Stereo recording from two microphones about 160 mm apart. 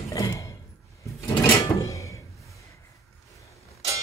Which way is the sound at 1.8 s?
20° left (ahead or behind).